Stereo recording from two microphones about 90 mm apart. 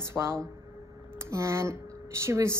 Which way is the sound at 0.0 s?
30° right (ahead or behind).